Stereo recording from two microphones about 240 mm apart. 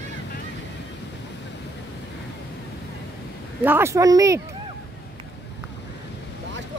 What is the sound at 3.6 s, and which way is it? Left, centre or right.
Speech, centre.